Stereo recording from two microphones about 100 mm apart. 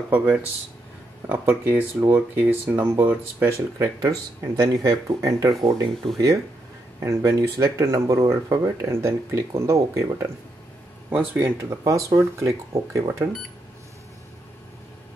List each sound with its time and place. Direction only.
0.1 s speech: 15° right (ahead or behind)
3.7 s speech: 35° right (ahead or behind)
7.1 s speech: 30° right (ahead or behind)
11.1 s speech: 20° right (ahead or behind)